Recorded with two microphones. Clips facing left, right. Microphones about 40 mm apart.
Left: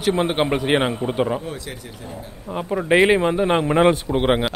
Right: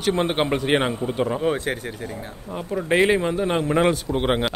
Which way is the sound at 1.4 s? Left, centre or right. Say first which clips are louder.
Right 9 dB; right.